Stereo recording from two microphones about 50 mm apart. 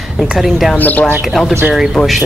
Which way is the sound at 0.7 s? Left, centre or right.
Left.